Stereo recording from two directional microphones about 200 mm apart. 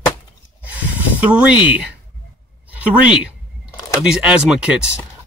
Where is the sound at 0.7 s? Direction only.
10° right (ahead or behind).